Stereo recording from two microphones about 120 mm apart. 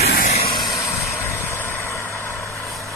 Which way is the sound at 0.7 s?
25° left (ahead or behind).